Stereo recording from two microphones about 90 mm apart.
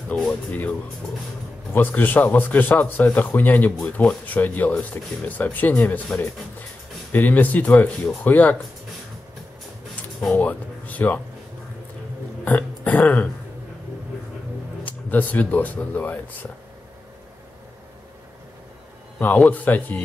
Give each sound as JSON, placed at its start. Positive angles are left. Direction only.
{"t": 0.1, "sound": "a man's voice", "side_deg": 10}
{"t": 7.1, "sound": "a man's voice", "side_deg": 20}
{"t": 10.3, "sound": "speech", "side_deg": 15}
{"t": 12.4, "sound": "burping", "side_deg": 20}
{"t": 14.9, "sound": "a man's voice", "side_deg": 20}
{"t": 19.1, "sound": "a man's voice", "side_deg": 15}